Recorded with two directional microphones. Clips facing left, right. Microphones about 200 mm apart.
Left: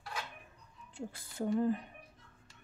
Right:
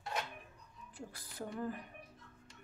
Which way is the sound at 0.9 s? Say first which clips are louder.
Left 6 dB; 25° left (ahead or behind).